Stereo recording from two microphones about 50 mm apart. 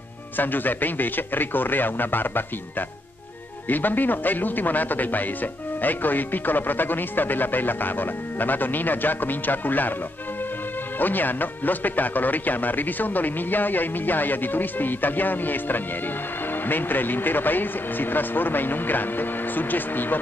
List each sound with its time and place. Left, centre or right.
0.4 s speech: left
3.6 s speech: left
11.0 s speech: left